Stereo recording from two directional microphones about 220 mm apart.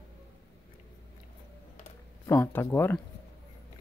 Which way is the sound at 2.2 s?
10° left (ahead or behind).